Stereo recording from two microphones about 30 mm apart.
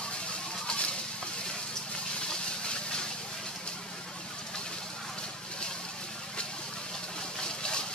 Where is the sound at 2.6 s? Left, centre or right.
Left.